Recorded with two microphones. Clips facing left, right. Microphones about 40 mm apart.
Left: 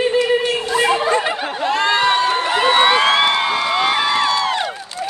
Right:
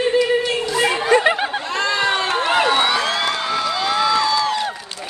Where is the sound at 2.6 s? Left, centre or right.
Left.